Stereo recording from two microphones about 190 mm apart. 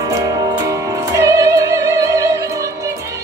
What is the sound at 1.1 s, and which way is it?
Music, 15° right (ahead or behind).